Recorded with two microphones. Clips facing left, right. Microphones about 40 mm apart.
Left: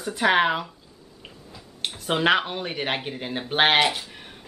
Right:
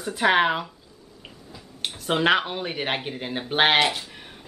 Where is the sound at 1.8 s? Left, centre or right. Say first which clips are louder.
Even; centre.